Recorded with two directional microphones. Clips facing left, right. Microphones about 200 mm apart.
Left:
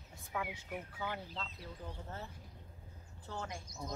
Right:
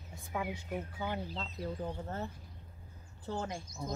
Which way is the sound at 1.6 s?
45° right (ahead or behind).